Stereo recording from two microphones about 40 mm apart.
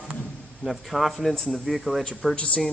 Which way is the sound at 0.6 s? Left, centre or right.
Centre.